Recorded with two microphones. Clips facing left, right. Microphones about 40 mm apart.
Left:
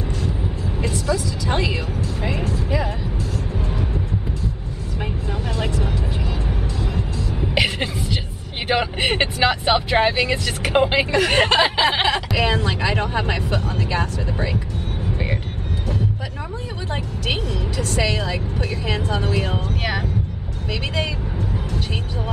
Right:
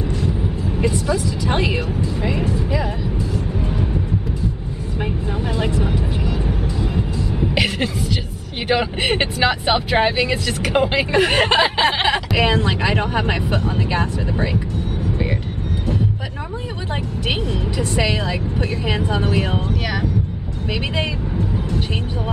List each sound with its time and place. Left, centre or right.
0.7 s speech: centre
5.6 s vehicle: centre
7.5 s a sound: centre
8.6 s speech: centre
11.1 s speech: centre
11.3 s speech: centre
12.1 s speech: centre
17.5 s speech: centre